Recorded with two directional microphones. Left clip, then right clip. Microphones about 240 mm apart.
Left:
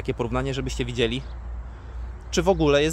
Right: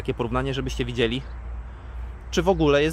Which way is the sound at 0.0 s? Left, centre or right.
Centre.